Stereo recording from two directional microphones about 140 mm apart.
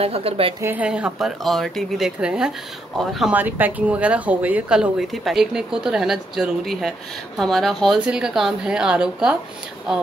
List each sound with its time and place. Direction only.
0.0 s a woman's voice: 45° right (ahead or behind)
0.6 s speech: 15° right (ahead or behind)